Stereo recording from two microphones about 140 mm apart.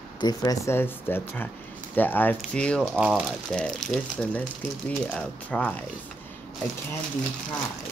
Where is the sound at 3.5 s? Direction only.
5° left (ahead or behind).